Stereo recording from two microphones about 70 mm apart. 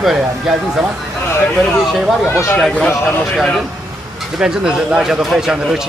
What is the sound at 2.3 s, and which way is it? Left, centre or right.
Speech, left.